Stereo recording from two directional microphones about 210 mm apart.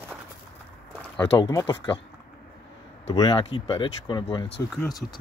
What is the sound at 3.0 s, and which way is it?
Speech, 20° left (ahead or behind).